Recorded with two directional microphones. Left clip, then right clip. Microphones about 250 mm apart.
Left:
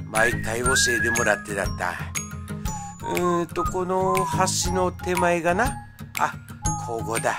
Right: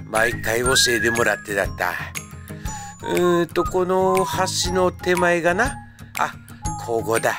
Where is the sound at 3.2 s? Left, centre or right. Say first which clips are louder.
Right 5 dB; centre.